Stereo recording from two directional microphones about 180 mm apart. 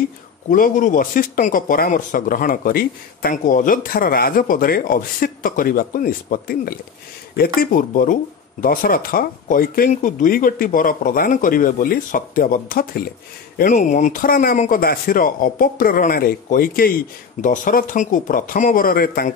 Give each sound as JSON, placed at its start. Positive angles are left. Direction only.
{"t": 0.5, "sound": "speech", "side_deg": 45}